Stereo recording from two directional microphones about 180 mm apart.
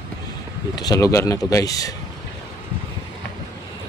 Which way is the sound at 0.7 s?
20° left (ahead or behind).